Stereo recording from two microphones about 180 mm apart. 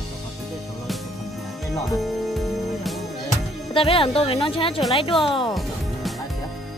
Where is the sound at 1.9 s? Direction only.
Centre (ahead or behind).